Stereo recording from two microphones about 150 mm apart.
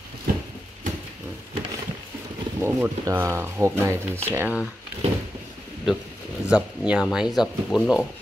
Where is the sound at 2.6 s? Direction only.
15° right (ahead or behind).